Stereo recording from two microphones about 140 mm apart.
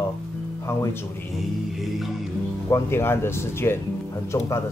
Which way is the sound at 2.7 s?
15° left (ahead or behind).